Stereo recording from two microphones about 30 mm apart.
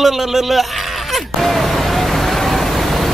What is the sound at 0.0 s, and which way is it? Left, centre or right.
Speech, centre.